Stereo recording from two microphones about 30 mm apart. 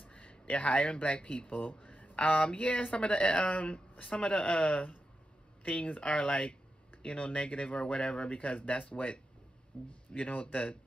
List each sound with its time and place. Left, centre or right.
0.0 s speech: left
1.5 s a sound: left
2.1 s speech: left